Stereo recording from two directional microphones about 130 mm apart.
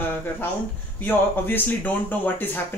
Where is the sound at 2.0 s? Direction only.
15° left (ahead or behind).